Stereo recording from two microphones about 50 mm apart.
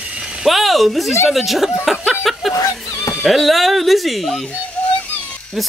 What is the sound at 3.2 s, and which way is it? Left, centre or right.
Speech, centre.